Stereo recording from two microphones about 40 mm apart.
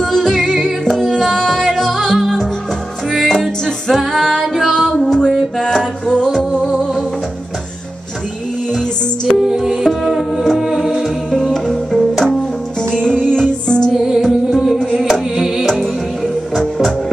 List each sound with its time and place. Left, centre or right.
0.0 s music: centre
3.1 s music: centre
3.3 s music: centre
9.4 s music: centre
11.4 s music: centre
12.9 s music: centre
13.9 s music: centre